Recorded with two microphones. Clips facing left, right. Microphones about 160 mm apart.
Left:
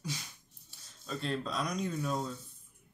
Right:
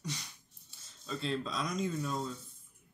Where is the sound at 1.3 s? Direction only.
5° left (ahead or behind).